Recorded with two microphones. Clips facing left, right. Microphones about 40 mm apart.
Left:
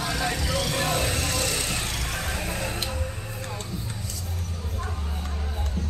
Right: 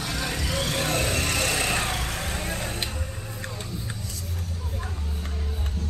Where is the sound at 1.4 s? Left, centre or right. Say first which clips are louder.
Right 3 dB; right.